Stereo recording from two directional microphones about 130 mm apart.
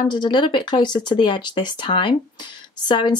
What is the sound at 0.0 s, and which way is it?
A woman's voice, 35° left (ahead or behind).